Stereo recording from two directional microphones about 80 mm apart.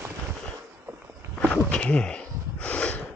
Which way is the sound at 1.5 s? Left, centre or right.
Centre.